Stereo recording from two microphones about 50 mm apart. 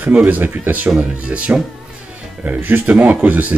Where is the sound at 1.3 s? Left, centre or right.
Right.